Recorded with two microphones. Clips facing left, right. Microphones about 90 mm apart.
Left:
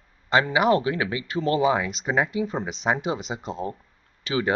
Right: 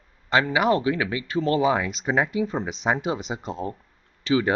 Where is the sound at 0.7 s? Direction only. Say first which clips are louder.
Even; 25° left (ahead or behind).